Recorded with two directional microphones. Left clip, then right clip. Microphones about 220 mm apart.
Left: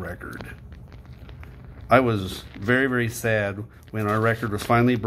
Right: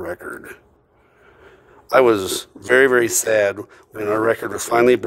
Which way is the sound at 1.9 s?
50° right (ahead or behind).